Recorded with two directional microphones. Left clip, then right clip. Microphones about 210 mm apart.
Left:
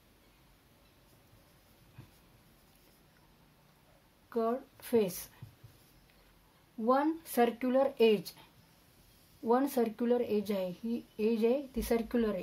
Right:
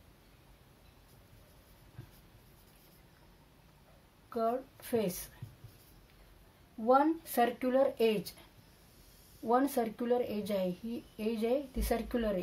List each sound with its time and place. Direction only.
4.3 s speech: 35° left (ahead or behind)
6.9 s a woman's voice: 40° left (ahead or behind)
9.5 s a woman's voice: 35° left (ahead or behind)